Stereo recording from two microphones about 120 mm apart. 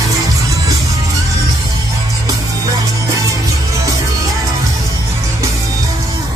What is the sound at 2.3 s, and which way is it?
Music, 30° right (ahead or behind).